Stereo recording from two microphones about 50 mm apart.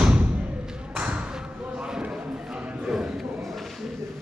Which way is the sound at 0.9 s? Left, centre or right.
Right.